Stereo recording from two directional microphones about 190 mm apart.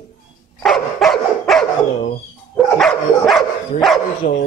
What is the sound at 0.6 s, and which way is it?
Dog, centre (ahead or behind).